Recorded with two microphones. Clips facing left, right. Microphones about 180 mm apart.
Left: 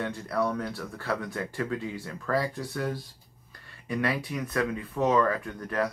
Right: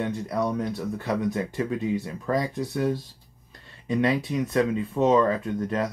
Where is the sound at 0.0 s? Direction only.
20° right (ahead or behind).